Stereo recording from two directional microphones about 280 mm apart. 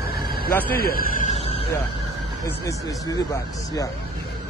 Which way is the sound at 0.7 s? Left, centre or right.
Left.